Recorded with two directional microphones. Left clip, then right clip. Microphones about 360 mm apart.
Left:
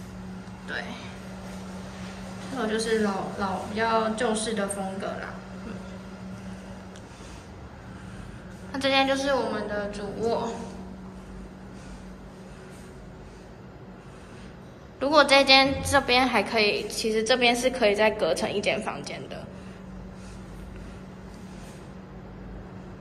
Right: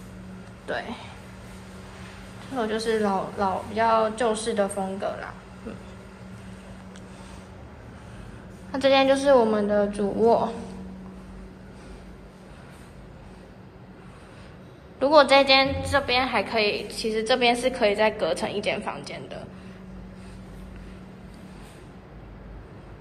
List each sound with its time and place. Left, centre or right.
0.7 s speech: centre
2.5 s speech: centre
8.7 s speech: centre
15.0 s a woman's voice: centre